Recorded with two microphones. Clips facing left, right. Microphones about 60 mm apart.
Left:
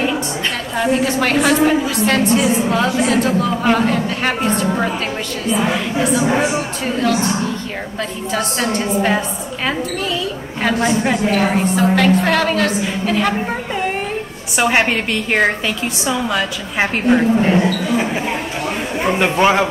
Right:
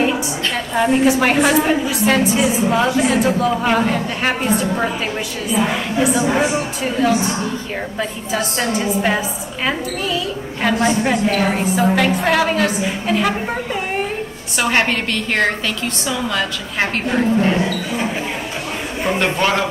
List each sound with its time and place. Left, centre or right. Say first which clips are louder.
1.0 s a woman's voice: right 1 dB; centre
5.9 s a woman's voice: right 1 dB; centre
8.3 s a woman's voice: left 2 dB; centre
10.6 s a woman's voice: even; centre
14.6 s a woman's voice: left 2 dB; centre
19.0 s a woman's voice: left 2 dB; centre
19.3 s a man's voice: left 4 dB; left